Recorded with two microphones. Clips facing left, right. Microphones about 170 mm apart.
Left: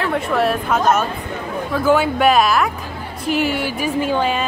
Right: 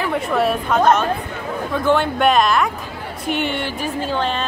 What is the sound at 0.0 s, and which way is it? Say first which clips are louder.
A man's voice: left 1 dB; centre (ahead or behind).